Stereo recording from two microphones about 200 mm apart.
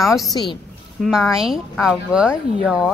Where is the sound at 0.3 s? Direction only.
20° left (ahead or behind).